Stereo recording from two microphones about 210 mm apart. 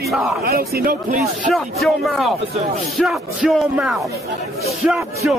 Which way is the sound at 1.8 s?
Centre (ahead or behind).